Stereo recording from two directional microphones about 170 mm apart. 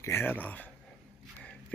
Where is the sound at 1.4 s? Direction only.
5° left (ahead or behind).